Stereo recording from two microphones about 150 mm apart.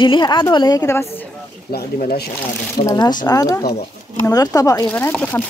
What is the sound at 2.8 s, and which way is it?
Speech, 25° left (ahead or behind).